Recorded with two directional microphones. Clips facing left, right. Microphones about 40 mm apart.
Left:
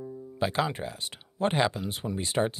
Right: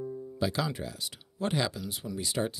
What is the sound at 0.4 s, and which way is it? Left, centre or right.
Speech, left.